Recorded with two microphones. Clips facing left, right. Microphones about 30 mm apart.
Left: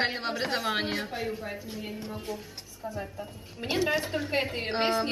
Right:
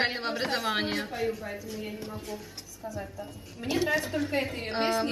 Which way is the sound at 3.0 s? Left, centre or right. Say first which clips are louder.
Left 1 dB; centre.